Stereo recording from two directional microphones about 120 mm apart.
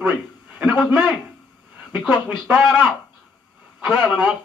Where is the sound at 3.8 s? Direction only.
10° right (ahead or behind).